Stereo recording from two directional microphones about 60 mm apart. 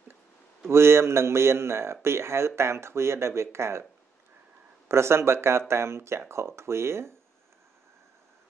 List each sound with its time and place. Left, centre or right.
0.7 s speech: right
4.8 s speech: right